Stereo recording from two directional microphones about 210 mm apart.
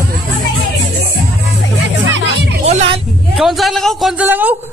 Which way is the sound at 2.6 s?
30° right (ahead or behind).